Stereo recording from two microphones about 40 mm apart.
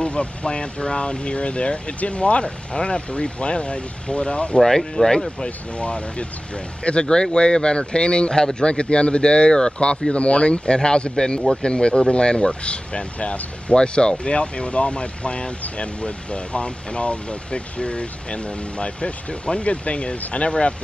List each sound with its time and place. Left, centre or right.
0.0 s speech: left
4.6 s speech: centre
5.4 s speech: left